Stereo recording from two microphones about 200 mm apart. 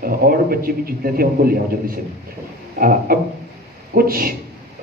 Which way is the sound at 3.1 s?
45° right (ahead or behind).